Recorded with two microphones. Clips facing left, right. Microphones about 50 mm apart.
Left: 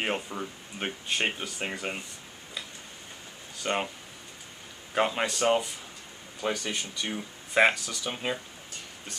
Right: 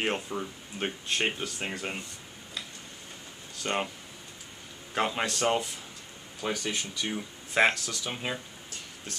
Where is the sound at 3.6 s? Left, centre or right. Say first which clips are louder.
Left 1 dB; centre.